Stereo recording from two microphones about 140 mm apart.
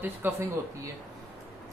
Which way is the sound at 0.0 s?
15° right (ahead or behind).